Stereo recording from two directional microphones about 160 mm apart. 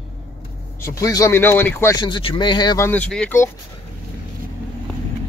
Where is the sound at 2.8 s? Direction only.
10° left (ahead or behind).